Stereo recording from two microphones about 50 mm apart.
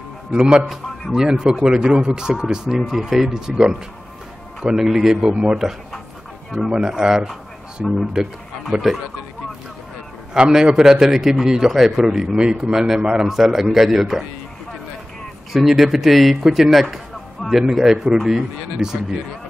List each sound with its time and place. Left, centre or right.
0.3 s a man's voice: centre
5.2 s speech: centre
6.7 s a man's voice: centre
10.5 s a man's voice: centre
12.4 s a man's voice: centre
15.5 s a man's voice: centre
16.4 s a sound: centre
17.5 s a man's voice: centre